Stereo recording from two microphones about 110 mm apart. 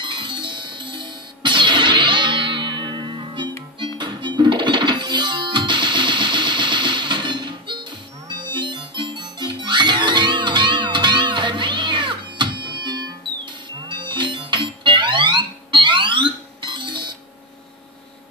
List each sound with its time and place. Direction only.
0.0 s music: 45° right (ahead or behind)